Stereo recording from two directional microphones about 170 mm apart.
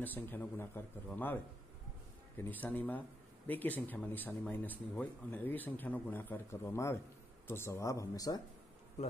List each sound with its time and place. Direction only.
0.0 s speech: 10° left (ahead or behind)